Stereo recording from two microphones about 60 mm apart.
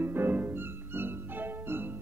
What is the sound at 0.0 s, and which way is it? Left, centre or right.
Music, right.